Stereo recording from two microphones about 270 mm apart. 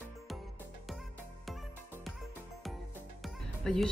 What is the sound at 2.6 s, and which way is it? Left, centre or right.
Music, centre.